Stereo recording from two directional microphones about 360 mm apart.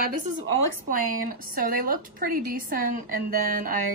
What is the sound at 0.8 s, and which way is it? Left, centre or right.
A woman's voice, right.